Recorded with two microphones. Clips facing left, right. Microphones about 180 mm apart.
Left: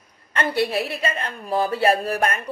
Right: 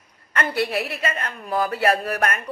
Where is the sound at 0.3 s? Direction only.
25° left (ahead or behind).